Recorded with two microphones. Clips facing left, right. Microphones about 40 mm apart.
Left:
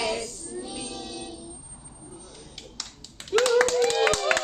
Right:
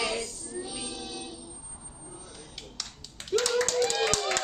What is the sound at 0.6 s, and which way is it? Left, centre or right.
Music, centre.